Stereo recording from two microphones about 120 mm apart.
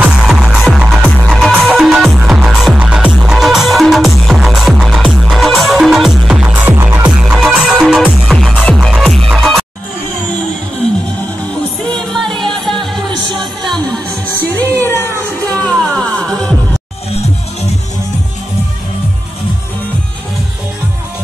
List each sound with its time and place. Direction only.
0.0 s music: 5° right (ahead or behind)
7.1 s music: 5° right (ahead or behind)
11.9 s music: 5° left (ahead or behind)
14.6 s music: 15° left (ahead or behind)
15.4 s music: 5° left (ahead or behind)